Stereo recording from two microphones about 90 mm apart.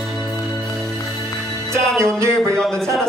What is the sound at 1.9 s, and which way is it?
Music, 30° right (ahead or behind).